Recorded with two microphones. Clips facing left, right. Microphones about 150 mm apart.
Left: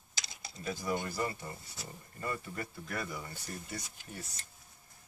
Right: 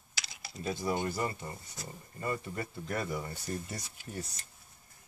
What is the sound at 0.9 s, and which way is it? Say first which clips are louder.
Speech: right 2 dB; 25° right (ahead or behind).